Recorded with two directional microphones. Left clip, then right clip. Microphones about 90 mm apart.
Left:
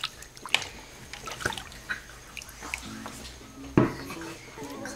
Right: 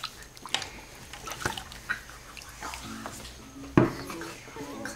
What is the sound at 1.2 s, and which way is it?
Trickle, 5° right (ahead or behind).